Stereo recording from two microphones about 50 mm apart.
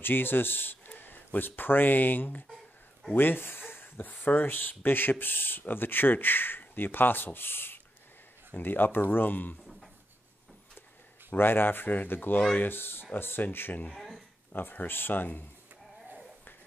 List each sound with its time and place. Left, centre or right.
0.0 s speech: left
11.3 s speech: left
13.9 s a sound: centre
14.5 s speech: left